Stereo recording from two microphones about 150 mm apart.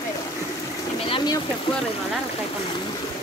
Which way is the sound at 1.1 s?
30° left (ahead or behind).